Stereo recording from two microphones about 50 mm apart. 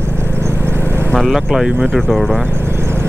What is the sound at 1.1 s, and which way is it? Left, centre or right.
Speech, centre.